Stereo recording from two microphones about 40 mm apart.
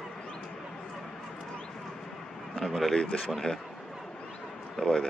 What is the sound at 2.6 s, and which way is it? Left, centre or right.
Speech, centre.